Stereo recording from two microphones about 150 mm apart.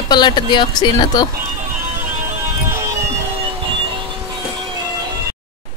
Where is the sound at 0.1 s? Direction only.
30° left (ahead or behind).